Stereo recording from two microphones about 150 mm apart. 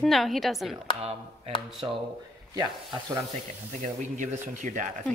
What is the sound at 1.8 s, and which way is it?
Speech, 30° right (ahead or behind).